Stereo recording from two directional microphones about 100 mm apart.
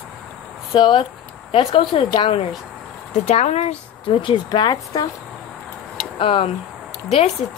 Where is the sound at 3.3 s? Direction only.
90° left.